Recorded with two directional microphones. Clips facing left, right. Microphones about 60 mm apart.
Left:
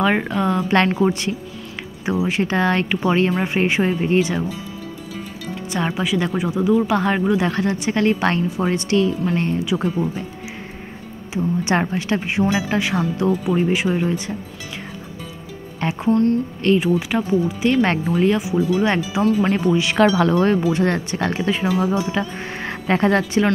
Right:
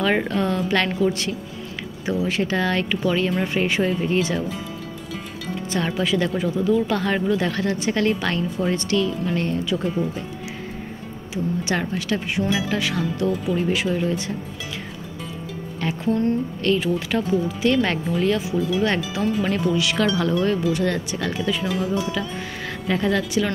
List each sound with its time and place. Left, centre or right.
0.0 s speech: centre
5.7 s speech: centre
11.3 s speech: left
15.8 s speech: left
22.8 s speech: left